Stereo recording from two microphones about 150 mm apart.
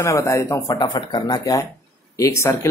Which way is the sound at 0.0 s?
20° left (ahead or behind).